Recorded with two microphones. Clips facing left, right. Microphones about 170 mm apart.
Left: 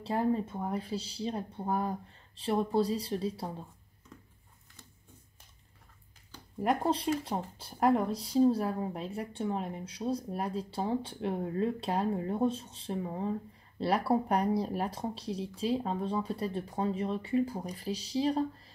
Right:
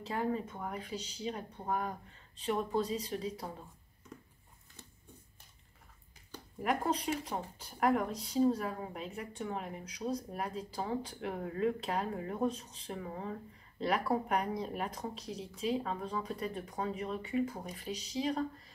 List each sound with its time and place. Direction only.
0.0 s speech: 30° left (ahead or behind)
6.6 s speech: 35° left (ahead or behind)